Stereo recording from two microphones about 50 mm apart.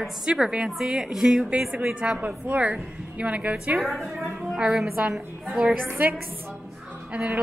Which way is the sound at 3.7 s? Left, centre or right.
Centre.